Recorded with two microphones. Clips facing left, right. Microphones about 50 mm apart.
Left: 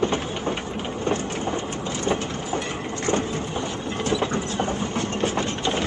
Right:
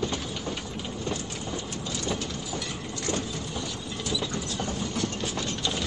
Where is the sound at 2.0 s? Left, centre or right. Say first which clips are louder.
Left 8 dB; left.